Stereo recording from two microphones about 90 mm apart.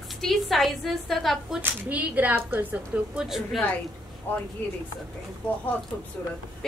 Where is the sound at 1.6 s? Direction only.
20° right (ahead or behind).